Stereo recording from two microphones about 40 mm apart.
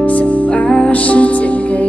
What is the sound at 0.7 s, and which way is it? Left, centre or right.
Music, left.